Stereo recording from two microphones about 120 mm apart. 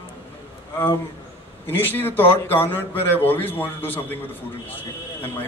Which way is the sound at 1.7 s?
15° left (ahead or behind).